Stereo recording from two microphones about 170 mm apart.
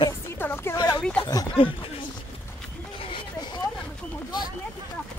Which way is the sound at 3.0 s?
30° left (ahead or behind).